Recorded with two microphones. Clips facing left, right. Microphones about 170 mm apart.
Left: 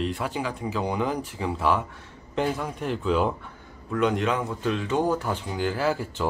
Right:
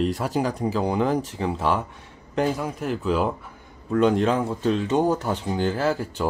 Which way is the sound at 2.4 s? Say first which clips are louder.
Right 3 dB; centre (ahead or behind).